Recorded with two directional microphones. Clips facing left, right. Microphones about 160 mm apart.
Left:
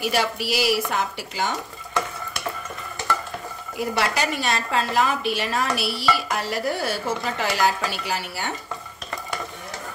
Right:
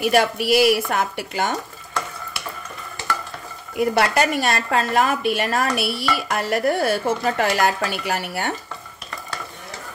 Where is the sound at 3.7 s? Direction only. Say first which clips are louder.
Right 6 dB; 55° right (ahead or behind).